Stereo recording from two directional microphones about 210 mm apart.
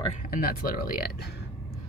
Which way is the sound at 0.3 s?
45° left (ahead or behind).